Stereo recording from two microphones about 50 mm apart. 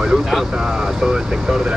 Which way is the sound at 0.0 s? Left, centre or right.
Centre.